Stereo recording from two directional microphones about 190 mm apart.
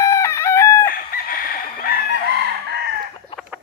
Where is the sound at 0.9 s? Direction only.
50° left (ahead or behind).